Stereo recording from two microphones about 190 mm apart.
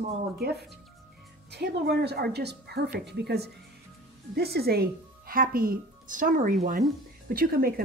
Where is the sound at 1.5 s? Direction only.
60° right (ahead or behind); by 6.9 s 40° right (ahead or behind).